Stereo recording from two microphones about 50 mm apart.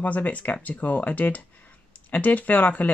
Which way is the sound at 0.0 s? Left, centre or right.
Left.